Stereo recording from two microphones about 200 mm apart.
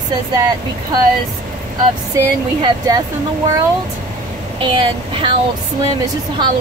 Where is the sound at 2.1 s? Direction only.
20° right (ahead or behind).